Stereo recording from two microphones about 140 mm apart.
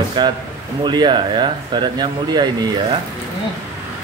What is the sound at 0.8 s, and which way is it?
Speech, 35° right (ahead or behind).